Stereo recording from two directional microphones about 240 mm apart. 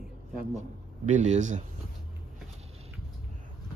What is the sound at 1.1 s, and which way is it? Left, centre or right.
Speech, right.